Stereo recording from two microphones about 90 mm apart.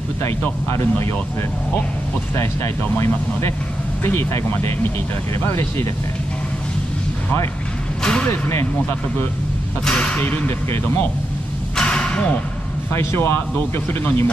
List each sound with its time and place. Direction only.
0.4 s speech: 25° left (ahead or behind)
2.3 s speech: 30° left (ahead or behind)
8.0 s music: 10° left (ahead or behind)
8.3 s speech: 30° left (ahead or behind)
9.8 s speech: 10° left (ahead or behind)
11.7 s a sound: 10° left (ahead or behind)
12.9 s speech: 30° left (ahead or behind)